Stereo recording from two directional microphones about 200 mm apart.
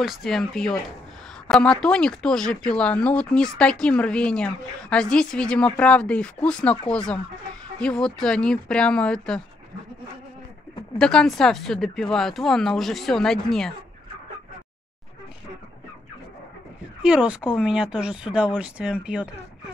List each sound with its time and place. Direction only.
0.0 s speech: centre (ahead or behind)
11.0 s speech: 5° left (ahead or behind)
17.0 s speech: 5° right (ahead or behind)